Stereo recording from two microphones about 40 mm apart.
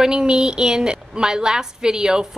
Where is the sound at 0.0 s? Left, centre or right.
Right.